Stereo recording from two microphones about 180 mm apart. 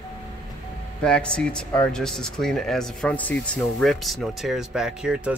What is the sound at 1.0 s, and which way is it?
Speech, 5° left (ahead or behind).